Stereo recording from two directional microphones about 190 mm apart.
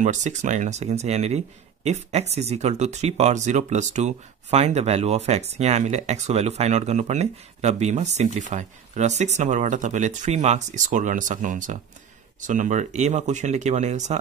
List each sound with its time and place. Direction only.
0.0 s speech: 40° right (ahead or behind)